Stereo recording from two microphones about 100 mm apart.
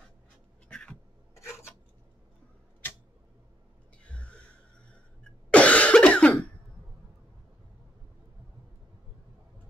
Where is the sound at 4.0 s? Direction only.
10° left (ahead or behind).